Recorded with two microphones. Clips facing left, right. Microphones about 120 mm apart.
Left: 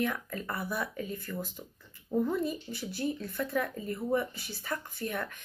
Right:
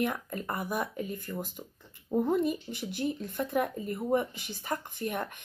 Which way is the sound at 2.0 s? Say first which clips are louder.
Right 3 dB; 30° right (ahead or behind).